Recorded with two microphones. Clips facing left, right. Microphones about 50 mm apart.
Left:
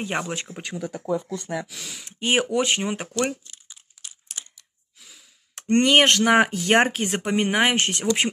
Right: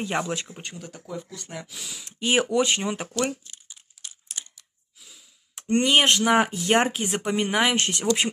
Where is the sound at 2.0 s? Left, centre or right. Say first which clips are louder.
Left 1 dB; left.